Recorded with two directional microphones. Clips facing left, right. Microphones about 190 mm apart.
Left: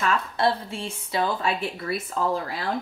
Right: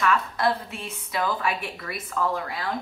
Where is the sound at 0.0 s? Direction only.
25° left (ahead or behind).